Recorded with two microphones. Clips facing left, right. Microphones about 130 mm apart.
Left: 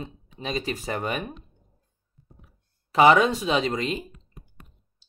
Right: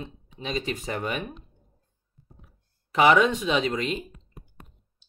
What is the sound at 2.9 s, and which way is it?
Speech, 35° left (ahead or behind).